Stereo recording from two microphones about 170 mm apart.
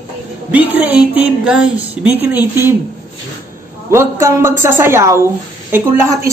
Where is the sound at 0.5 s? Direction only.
10° right (ahead or behind).